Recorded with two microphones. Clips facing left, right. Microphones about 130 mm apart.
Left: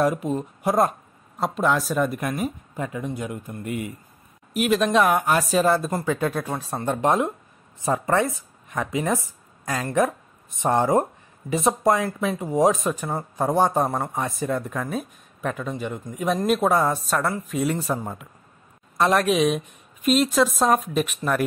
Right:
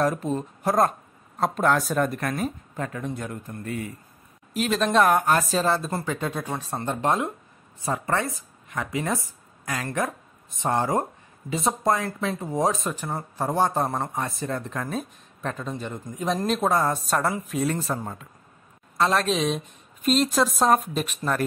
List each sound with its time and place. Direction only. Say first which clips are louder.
0.0 s speech: left 2 dB; 10° left (ahead or behind)
6.8 s speech: left 4 dB; 15° left (ahead or behind)
17.6 s speech: left 2 dB; 15° left (ahead or behind)